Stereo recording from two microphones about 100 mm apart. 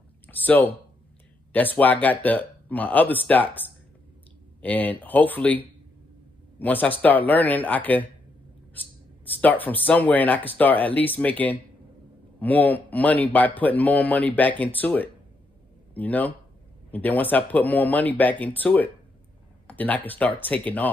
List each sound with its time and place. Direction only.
0.3 s speech: 20° left (ahead or behind)
6.6 s speech: 15° left (ahead or behind)
9.4 s speech: 15° left (ahead or behind)